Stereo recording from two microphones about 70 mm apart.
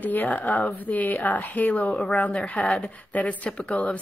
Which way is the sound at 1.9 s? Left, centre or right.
Centre.